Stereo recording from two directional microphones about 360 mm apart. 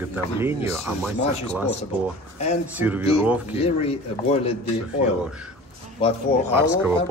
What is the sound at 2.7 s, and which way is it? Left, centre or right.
Speech, centre.